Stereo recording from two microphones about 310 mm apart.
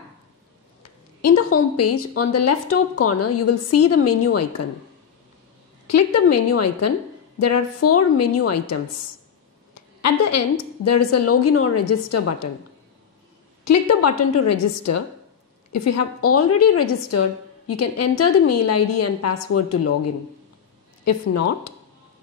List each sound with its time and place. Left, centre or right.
1.2 s a woman's voice: left
5.9 s a woman's voice: left
10.0 s a woman's voice: left
13.7 s a woman's voice: left